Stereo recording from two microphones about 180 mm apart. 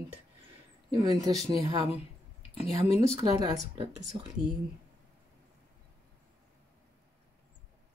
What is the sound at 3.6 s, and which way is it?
Speech, 40° right (ahead or behind).